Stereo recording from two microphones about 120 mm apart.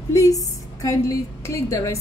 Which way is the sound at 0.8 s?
25° left (ahead or behind).